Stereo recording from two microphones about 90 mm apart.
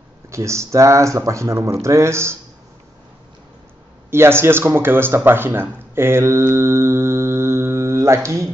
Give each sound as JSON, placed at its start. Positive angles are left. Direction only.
{"t": 0.3, "sound": "speech", "side_deg": -35}
{"t": 4.1, "sound": "speech", "side_deg": -25}